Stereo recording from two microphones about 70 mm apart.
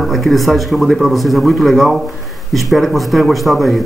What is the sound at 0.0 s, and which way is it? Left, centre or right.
Speech, centre.